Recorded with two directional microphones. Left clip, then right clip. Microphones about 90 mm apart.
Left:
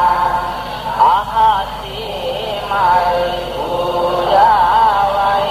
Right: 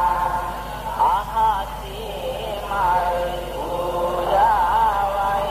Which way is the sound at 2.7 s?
35° right (ahead or behind).